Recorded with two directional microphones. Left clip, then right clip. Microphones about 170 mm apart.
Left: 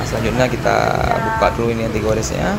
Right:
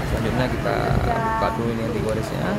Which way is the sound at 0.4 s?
20° left (ahead or behind).